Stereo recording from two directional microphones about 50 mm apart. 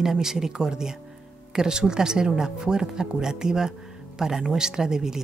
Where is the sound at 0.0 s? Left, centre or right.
Centre.